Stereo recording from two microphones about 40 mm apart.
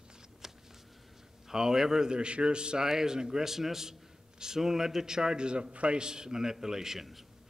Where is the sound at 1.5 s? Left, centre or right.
Centre.